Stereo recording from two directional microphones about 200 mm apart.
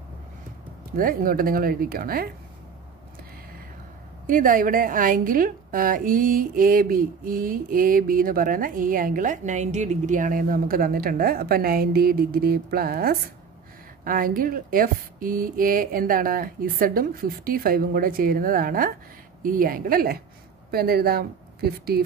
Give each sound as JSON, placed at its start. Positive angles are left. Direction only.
{"t": 0.9, "sound": "a woman's voice", "side_deg": -45}
{"t": 4.3, "sound": "a woman's voice", "side_deg": -45}